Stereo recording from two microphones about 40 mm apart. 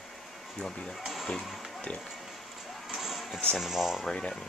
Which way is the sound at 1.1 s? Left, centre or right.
Centre.